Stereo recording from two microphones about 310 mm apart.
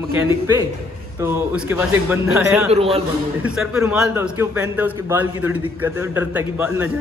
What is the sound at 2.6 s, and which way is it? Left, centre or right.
Speech, centre.